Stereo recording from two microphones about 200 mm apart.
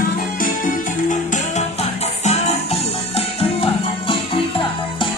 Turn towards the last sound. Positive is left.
turn(degrees=25)  # may be behind; listen again after turning